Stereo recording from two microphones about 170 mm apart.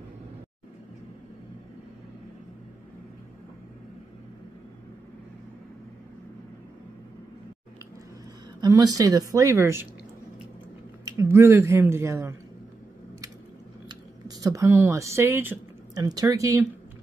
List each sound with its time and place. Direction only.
8.5 s a woman's voice: 25° right (ahead or behind)
11.1 s speech: 15° right (ahead or behind)
13.8 s speech: 20° right (ahead or behind)